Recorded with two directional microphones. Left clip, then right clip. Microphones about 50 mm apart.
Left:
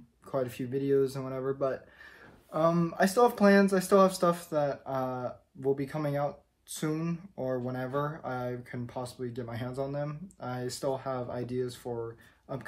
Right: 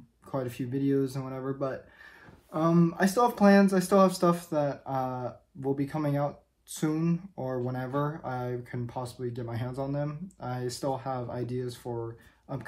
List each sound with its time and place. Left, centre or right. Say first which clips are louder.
0.3 s speech: left 1 dB; left
3.2 s speech: left 1 dB; centre
3.6 s speech: even; left